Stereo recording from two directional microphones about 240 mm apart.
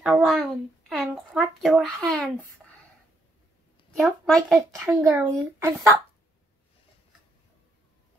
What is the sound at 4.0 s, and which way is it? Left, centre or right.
Speech, centre.